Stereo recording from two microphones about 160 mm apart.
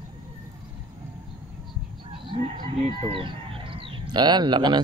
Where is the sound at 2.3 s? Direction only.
30° right (ahead or behind).